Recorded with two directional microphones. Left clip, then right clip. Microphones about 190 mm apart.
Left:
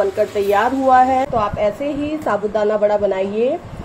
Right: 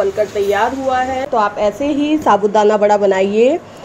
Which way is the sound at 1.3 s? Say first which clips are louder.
Right 3 dB; 25° right (ahead or behind).